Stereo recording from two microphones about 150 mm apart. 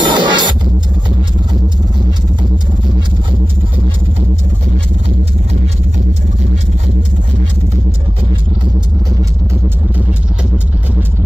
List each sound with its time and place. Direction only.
0.0 s music: 30° right (ahead or behind)